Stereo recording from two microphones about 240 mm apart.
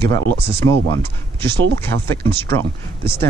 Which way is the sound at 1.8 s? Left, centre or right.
Centre.